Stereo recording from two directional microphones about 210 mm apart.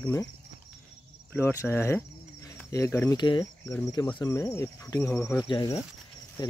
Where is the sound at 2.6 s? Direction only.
15° left (ahead or behind).